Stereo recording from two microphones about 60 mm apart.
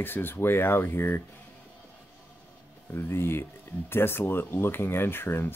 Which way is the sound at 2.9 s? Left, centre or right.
Left.